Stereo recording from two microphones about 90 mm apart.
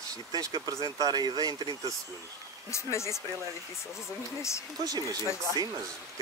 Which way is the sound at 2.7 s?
30° left (ahead or behind).